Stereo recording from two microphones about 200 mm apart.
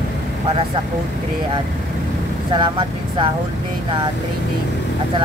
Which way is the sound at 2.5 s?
25° right (ahead or behind).